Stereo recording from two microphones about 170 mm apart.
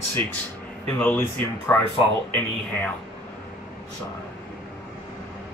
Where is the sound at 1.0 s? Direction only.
10° left (ahead or behind).